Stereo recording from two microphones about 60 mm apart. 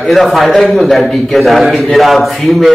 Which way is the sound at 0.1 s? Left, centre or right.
Centre.